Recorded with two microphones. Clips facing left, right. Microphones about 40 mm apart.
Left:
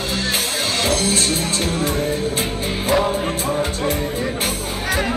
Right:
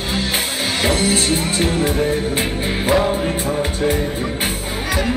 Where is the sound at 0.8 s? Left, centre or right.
Centre.